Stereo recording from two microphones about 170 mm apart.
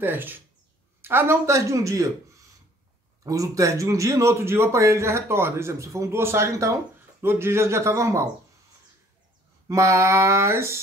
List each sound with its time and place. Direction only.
0.0 s a man's voice: 10° right (ahead or behind)
9.7 s a man's voice: 15° right (ahead or behind)